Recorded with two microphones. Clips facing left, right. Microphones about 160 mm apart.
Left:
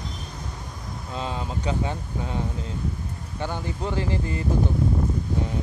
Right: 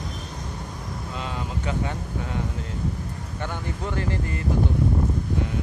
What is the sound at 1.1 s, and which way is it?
Speech, 30° left (ahead or behind).